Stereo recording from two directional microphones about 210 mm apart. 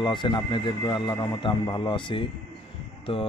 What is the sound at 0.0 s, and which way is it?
Speech, 20° left (ahead or behind).